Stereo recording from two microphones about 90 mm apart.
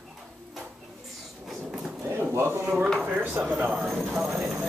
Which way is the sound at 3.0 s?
15° right (ahead or behind).